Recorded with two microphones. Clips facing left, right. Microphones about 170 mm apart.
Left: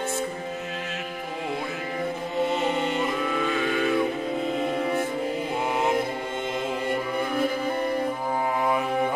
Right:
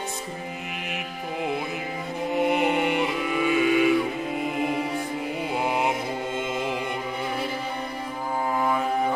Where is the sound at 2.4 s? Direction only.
15° right (ahead or behind).